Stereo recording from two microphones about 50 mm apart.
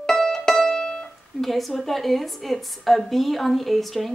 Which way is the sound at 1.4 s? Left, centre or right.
Centre.